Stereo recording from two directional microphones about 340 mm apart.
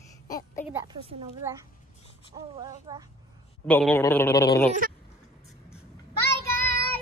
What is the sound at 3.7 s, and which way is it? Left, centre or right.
Speech, centre.